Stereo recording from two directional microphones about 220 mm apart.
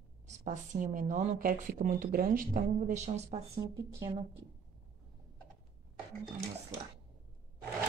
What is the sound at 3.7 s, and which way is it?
Speech, 15° right (ahead or behind).